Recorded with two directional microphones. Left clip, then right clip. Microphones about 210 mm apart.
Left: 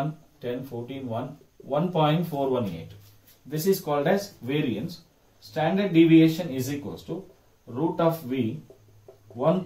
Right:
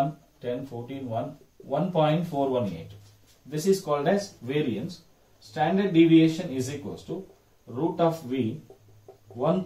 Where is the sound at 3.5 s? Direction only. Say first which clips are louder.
Even; 20° left (ahead or behind).